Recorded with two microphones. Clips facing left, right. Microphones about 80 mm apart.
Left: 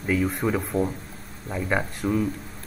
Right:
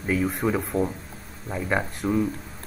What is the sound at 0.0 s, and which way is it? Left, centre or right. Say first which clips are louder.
Speech: even; centre.